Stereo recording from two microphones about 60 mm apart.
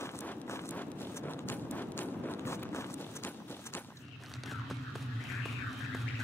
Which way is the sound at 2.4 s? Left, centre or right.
Left.